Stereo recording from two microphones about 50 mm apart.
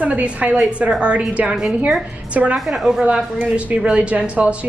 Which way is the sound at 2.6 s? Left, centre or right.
Centre.